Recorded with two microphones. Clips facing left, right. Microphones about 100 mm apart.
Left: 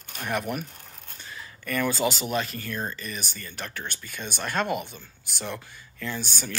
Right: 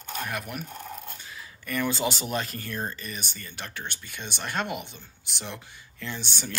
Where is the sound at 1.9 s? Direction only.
25° right (ahead or behind).